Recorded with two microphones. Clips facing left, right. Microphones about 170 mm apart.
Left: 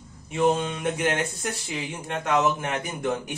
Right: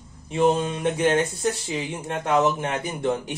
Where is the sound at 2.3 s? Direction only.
25° right (ahead or behind).